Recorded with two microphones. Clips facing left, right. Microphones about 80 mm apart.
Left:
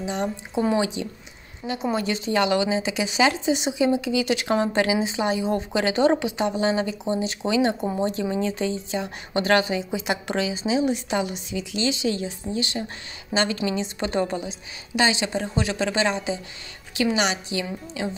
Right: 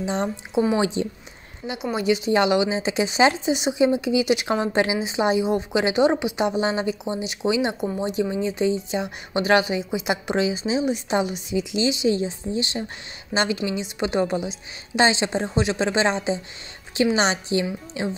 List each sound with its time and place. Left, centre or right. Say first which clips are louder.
0.0 s speech: right 2 dB; right
1.6 s speech: left 1 dB; centre
2.0 s speech: right 5 dB; centre